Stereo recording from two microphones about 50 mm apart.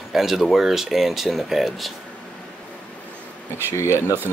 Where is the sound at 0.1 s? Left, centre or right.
Centre.